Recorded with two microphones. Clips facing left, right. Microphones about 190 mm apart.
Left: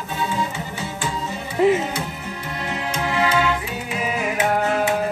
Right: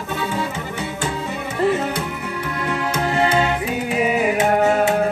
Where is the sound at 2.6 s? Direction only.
55° right (ahead or behind).